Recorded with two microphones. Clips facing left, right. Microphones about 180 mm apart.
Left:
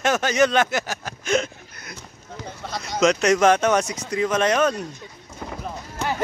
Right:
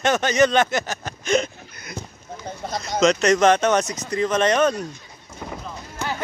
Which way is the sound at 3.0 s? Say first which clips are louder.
Right 1 dB; 10° left (ahead or behind).